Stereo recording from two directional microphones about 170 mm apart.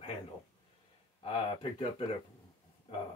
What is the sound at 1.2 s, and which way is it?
Speech, 35° left (ahead or behind).